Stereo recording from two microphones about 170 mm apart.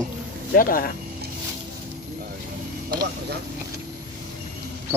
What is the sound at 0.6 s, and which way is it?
Speech, 55° left (ahead or behind).